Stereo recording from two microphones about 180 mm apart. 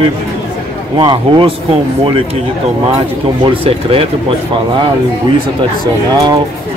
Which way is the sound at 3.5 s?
30° right (ahead or behind).